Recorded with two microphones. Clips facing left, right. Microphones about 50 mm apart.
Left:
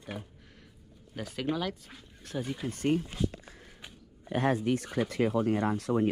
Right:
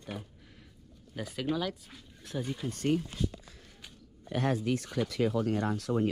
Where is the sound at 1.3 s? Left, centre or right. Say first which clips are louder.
Even; centre.